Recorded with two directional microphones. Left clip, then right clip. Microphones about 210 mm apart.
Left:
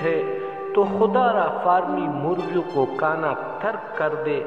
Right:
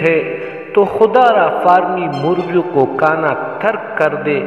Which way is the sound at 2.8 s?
25° right (ahead or behind).